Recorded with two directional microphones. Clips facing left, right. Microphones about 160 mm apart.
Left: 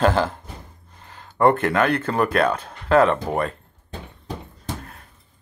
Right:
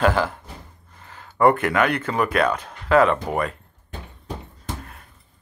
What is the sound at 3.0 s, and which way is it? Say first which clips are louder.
Speech: left 1 dB; 5° right (ahead or behind).